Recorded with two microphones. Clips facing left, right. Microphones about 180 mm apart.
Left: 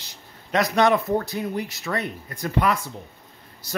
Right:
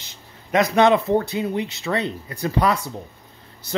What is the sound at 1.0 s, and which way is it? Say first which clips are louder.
Speech: right 4 dB; 25° right (ahead or behind).